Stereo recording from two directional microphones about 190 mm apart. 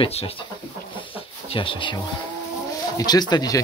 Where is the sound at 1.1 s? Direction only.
30° left (ahead or behind).